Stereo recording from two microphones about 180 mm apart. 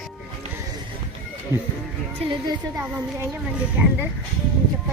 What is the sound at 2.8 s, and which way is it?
Speech, 10° right (ahead or behind).